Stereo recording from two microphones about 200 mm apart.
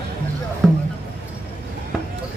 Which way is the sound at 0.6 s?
Centre (ahead or behind).